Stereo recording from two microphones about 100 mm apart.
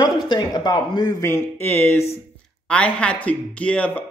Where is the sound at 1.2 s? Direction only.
25° left (ahead or behind).